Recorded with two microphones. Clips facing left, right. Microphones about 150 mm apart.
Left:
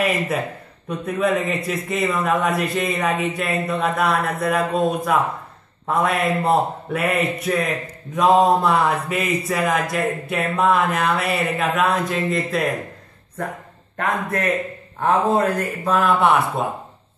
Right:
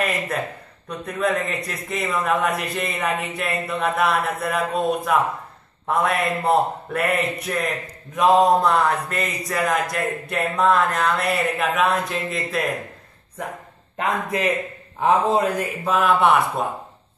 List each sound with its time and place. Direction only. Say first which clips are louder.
0.8 s a man's voice: left 3 dB; 5° left (ahead or behind)
13.9 s a man's voice: left 1 dB; 20° right (ahead or behind); by 16.6 s centre (ahead or behind)